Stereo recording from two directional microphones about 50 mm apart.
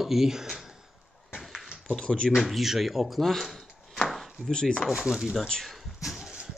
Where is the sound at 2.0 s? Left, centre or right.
Centre.